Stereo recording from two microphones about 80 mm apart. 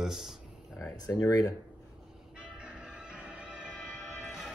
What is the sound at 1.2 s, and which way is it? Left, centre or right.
Speech, left.